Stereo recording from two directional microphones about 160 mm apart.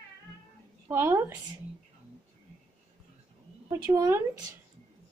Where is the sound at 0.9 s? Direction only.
15° right (ahead or behind).